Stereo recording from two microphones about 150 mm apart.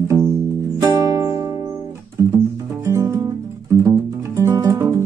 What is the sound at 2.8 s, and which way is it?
Music, 20° right (ahead or behind).